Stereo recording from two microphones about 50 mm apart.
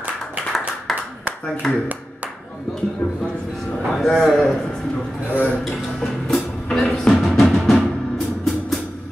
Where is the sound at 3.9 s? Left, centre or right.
Centre.